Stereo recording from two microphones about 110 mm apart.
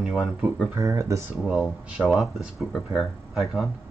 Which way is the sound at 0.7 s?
25° right (ahead or behind).